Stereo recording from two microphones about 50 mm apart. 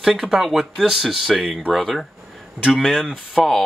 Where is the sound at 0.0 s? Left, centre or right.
Centre.